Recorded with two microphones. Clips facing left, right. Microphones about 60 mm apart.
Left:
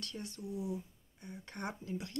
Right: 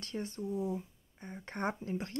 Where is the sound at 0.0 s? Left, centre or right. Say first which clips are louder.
Right 6 dB; right.